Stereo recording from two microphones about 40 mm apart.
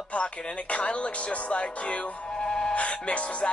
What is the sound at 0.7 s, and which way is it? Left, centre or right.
Music, left.